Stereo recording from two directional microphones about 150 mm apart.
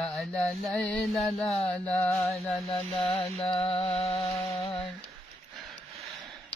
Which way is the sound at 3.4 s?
40° left (ahead or behind).